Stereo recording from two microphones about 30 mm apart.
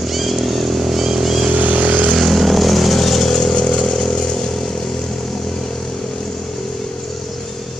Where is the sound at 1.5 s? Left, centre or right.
Right.